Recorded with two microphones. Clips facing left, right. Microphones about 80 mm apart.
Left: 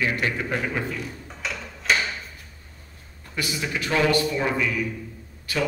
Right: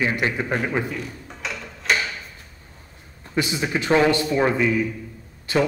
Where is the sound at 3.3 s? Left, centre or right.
Right.